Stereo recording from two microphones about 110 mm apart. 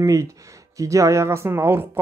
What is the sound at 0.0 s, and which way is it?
Speech, 30° right (ahead or behind).